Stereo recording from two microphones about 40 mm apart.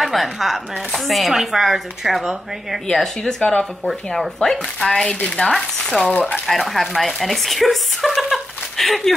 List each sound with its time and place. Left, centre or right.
0.0 s speech: centre
2.9 s speech: centre
5.4 s speech: left
6.4 s speech: centre